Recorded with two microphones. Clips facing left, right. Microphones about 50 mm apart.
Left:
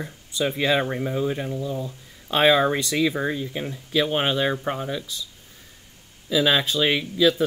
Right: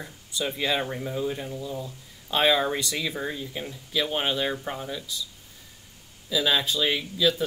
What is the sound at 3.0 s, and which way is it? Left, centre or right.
Speech, left.